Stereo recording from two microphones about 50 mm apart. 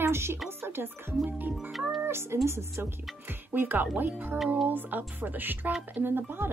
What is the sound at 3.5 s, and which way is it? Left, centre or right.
Speech, right.